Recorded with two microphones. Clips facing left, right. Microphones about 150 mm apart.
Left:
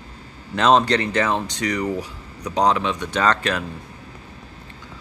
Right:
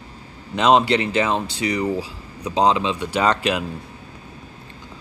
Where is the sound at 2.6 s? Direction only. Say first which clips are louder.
Right 1 dB; 30° right (ahead or behind).